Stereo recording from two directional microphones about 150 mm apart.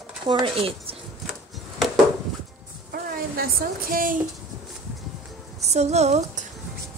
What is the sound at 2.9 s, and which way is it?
A woman's voice, 80° right.